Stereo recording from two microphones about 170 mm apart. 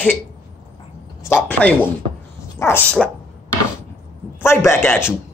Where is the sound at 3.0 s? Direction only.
Centre (ahead or behind).